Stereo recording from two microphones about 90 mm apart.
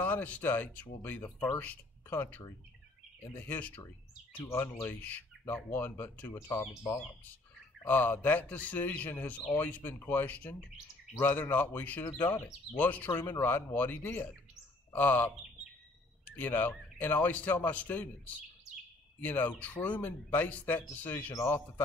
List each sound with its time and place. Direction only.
0.0 s speech: 20° left (ahead or behind)
4.5 s speech: 30° left (ahead or behind)
7.8 s speech: 20° left (ahead or behind)